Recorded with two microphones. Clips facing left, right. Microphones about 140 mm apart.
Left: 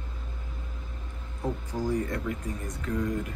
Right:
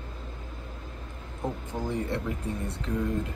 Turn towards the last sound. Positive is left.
turn(degrees=-30)  # may be behind; listen again after turning